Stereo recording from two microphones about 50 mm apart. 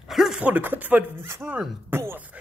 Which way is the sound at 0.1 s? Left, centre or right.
Centre.